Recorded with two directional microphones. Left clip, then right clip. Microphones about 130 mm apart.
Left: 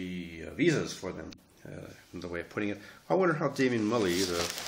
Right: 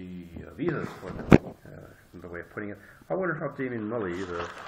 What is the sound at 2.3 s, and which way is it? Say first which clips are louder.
Speech: left 3 dB; 50° left (ahead or behind).